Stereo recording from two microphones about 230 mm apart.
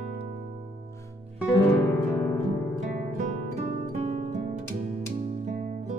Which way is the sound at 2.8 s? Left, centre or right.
Right.